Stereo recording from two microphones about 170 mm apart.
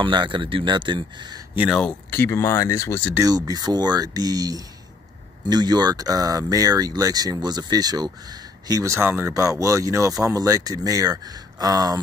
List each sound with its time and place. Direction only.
0.0 s speech: 30° right (ahead or behind)
1.5 s speech: 10° right (ahead or behind)
1.8 s speech: 10° left (ahead or behind)
3.2 s speech: 20° right (ahead or behind)